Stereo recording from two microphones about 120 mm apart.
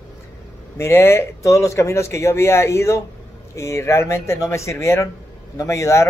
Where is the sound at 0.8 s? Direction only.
20° left (ahead or behind).